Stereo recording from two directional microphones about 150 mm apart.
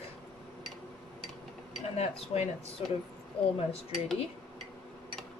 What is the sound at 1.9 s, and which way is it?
Speech, 45° left (ahead or behind).